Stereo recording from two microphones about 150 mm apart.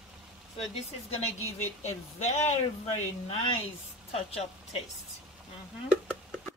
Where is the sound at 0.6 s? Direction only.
40° left (ahead or behind).